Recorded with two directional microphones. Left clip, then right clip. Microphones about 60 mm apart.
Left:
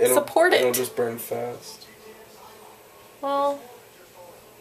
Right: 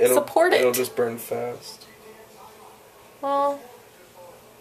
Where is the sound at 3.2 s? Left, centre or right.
Centre.